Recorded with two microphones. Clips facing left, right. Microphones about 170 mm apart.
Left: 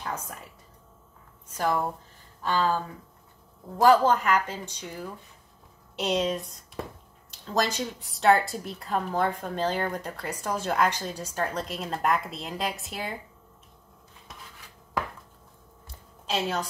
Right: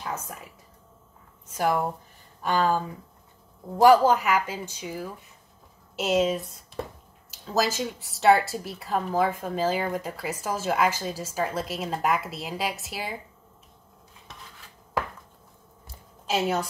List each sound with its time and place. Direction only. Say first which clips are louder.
0.0 s speech: right 1 dB; 5° right (ahead or behind)
1.6 s speech: right 2 dB; 15° right (ahead or behind)
3.8 s a woman's voice: right 2 dB; 10° right (ahead or behind)
16.3 s a woman's voice: right 3 dB; 10° right (ahead or behind)